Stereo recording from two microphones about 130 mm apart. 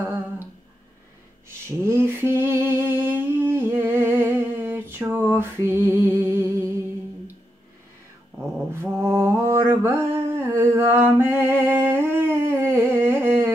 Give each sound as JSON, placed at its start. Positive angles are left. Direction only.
{"t": 0.0, "sound": "humming", "side_deg": -20}
{"t": 1.7, "sound": "lullaby", "side_deg": -20}
{"t": 5.1, "sound": "music", "side_deg": -20}
{"t": 8.7, "sound": "mantra", "side_deg": -20}
{"t": 10.4, "sound": "humming", "side_deg": -15}
{"t": 13.2, "sound": "carnatic music", "side_deg": -20}